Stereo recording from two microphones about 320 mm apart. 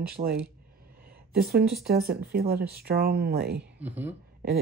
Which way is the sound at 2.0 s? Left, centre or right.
Right.